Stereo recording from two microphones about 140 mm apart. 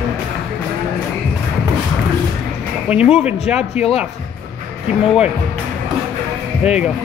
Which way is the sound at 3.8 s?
45° left (ahead or behind).